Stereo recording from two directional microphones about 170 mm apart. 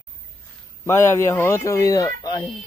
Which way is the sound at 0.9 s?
15° left (ahead or behind).